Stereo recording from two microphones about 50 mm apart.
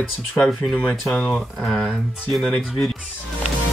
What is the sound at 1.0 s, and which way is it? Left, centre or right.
Speech, centre.